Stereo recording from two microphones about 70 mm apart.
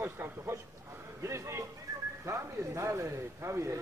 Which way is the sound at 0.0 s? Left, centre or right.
Right.